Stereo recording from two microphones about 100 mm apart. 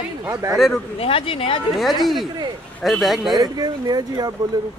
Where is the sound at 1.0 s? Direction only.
65° left (ahead or behind).